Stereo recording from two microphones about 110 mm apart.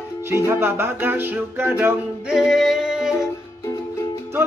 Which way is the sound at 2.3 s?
Centre (ahead or behind).